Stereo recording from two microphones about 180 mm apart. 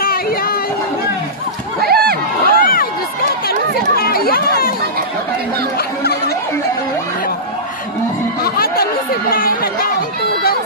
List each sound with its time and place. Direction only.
0.0 s speech: 55° left (ahead or behind)
1.8 s a sound: 60° right (ahead or behind)
2.4 s crowd: 55° left (ahead or behind)
3.4 s chatter: 55° left (ahead or behind)
9.3 s speech: 55° left (ahead or behind)